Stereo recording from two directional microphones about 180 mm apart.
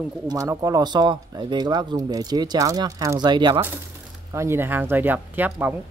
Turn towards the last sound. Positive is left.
turn(degrees=-10)  # may be behind; listen again after turning